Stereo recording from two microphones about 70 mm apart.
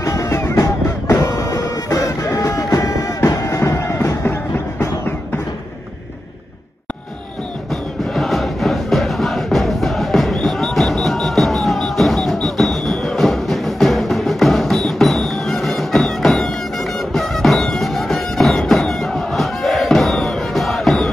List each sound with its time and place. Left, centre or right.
0.0 s music: left
1.2 s printer: left
1.9 s music: left
3.7 s music: left
7.7 s music: centre